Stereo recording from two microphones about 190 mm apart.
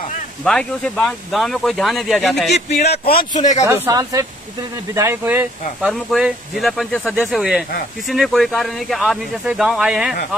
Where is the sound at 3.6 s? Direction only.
15° right (ahead or behind); by 7.1 s 5° left (ahead or behind).